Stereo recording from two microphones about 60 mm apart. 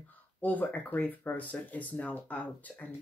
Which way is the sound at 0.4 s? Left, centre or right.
Left.